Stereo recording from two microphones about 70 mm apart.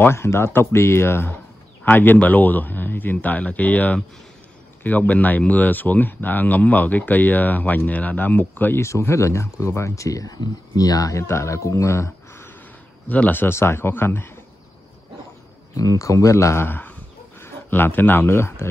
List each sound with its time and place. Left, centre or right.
0.0 s speech: left
8.8 s speech: left
13.1 s speech: left
15.7 s speech: left
16.6 s a man's voice: left